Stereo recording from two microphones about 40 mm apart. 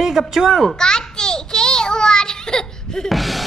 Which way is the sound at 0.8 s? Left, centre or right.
Centre.